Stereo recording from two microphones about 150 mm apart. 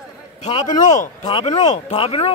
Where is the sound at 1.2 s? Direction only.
30° left (ahead or behind).